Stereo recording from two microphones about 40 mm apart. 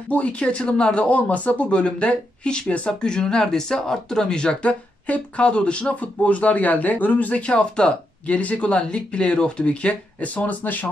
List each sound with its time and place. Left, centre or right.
0.1 s speech: left
4.6 s speech: left